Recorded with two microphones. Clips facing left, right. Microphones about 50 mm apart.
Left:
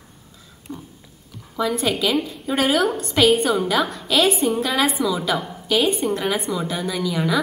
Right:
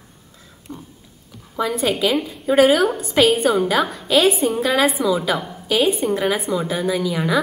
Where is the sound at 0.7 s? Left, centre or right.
Centre.